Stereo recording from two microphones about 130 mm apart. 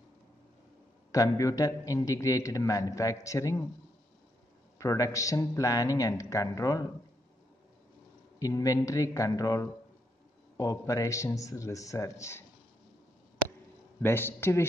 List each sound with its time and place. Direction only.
1.1 s a man's voice: 25° left (ahead or behind)
4.7 s a man's voice: 25° left (ahead or behind)
8.4 s a man's voice: 25° left (ahead or behind)
14.0 s a man's voice: 15° left (ahead or behind)